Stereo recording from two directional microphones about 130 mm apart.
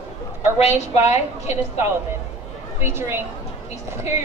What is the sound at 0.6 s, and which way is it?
Speech, 55° left (ahead or behind).